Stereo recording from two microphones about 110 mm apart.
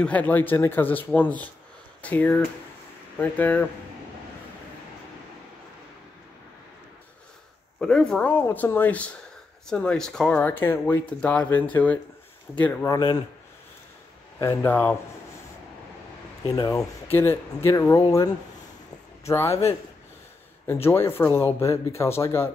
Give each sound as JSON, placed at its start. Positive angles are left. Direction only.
{"t": 0.0, "sound": "speech", "side_deg": 15}
{"t": 7.8, "sound": "speech", "side_deg": 5}
{"t": 10.3, "sound": "speech", "side_deg": 15}
{"t": 12.8, "sound": "speech", "side_deg": 35}
{"t": 14.4, "sound": "speech", "side_deg": 20}
{"t": 16.6, "sound": "speech", "side_deg": 25}
{"t": 20.6, "sound": "speech", "side_deg": 20}